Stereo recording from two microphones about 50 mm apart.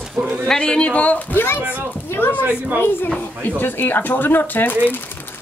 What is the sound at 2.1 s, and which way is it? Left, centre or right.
Speech, left.